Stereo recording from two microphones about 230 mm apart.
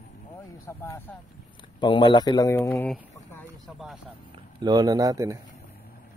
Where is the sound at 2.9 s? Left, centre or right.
Centre.